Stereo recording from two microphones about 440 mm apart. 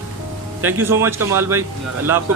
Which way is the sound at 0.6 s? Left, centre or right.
Centre.